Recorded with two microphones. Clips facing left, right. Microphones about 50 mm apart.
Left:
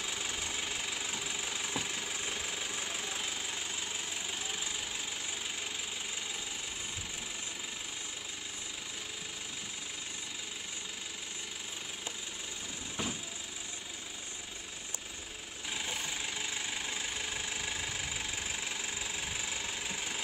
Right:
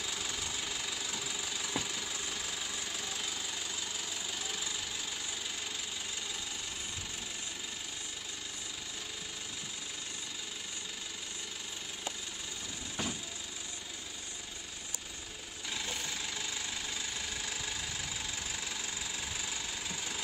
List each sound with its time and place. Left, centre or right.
0.0 s engine: centre
13.0 s vehicle: centre
15.7 s engine: centre